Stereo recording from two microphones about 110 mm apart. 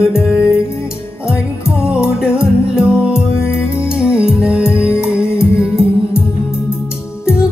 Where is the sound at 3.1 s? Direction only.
20° left (ahead or behind).